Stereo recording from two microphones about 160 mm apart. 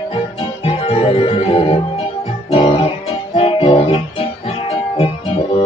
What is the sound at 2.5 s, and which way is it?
Guitar, 40° left (ahead or behind).